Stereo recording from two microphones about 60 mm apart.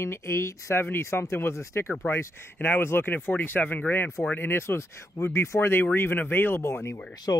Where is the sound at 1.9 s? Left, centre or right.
Left.